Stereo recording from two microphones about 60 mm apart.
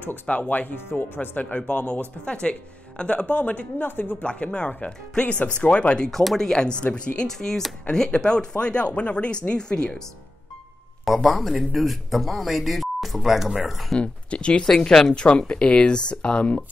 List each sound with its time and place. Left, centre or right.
0.0 s speech: left
6.0 s speech: centre
7.2 s speech: centre
11.1 s speech: centre
13.9 s speech: centre
15.2 s speech: centre